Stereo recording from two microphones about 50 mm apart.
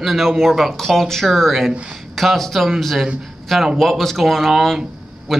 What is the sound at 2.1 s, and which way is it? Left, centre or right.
Speech, centre.